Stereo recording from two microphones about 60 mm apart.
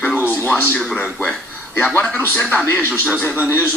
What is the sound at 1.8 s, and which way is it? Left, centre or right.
Speech, left.